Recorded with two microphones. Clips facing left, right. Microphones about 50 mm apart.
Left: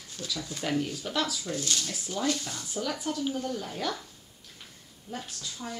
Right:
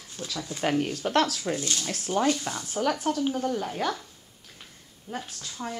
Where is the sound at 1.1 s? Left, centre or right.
Right.